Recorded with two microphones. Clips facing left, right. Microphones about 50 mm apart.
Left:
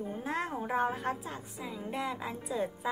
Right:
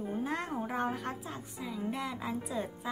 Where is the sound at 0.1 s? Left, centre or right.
Centre.